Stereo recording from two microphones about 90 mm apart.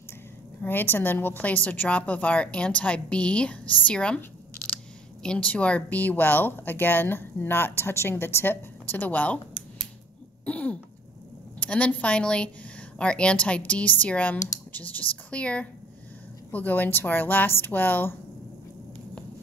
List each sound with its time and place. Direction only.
0.6 s a woman's voice: 20° left (ahead or behind)
5.2 s speech: 10° left (ahead or behind)
10.4 s cough: 15° left (ahead or behind)
11.6 s a woman's voice: 15° left (ahead or behind)